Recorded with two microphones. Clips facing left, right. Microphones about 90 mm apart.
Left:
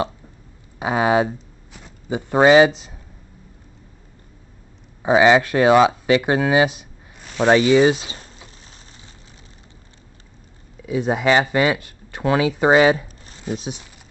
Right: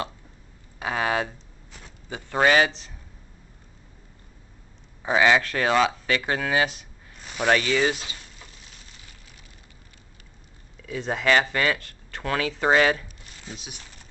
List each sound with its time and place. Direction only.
0.7 s speech: 20° left (ahead or behind)
5.0 s speech: 20° left (ahead or behind)
8.6 s a sound: 30° left (ahead or behind)
10.8 s speech: 15° left (ahead or behind)